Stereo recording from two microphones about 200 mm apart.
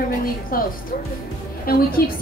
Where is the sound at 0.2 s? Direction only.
45° left (ahead or behind).